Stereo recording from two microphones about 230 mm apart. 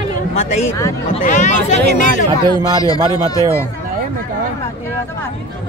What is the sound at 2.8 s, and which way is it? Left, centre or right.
Speech, centre.